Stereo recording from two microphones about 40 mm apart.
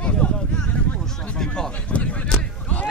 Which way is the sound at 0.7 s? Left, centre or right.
Left.